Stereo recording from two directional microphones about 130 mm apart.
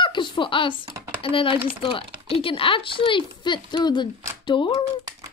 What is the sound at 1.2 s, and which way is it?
A woman's voice, 40° left (ahead or behind).